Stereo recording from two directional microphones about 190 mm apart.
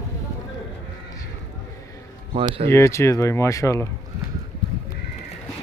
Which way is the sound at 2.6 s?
15° left (ahead or behind).